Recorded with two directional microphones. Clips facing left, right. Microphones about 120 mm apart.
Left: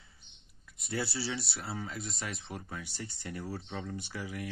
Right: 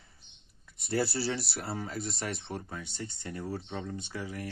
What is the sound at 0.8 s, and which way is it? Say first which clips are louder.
Speech: right 5 dB; 40° right (ahead or behind).